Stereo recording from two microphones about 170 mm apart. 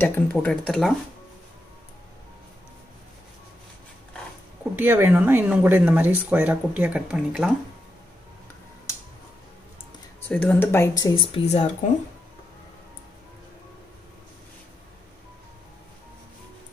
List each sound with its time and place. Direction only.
0.0 s speech: 10° left (ahead or behind)
4.7 s speech: 10° right (ahead or behind)
10.2 s speech: 10° left (ahead or behind)
11.1 s speech: 35° left (ahead or behind)